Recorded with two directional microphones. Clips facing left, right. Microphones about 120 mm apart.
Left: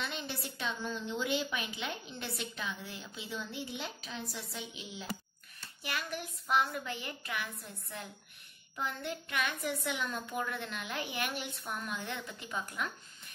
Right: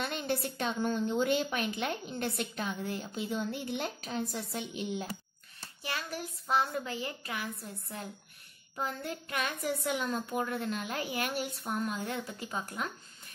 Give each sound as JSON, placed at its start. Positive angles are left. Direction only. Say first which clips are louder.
{"t": 0.0, "sound": "a woman's voice", "louder": "right 6 dB", "side_deg": -50}
{"t": 5.8, "sound": "hands", "louder": "right 1 dB", "side_deg": -30}
{"t": 6.4, "sound": "a child's voice", "louder": "right 1 dB", "side_deg": -30}
{"t": 8.7, "sound": "a child's voice", "louder": "right 2 dB", "side_deg": -40}